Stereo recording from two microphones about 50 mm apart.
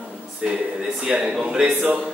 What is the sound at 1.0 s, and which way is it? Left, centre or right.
Speech, centre.